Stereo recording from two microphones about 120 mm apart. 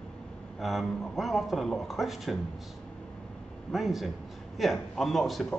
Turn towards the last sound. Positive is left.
turn(degrees=0)  # may be behind; listen again after turning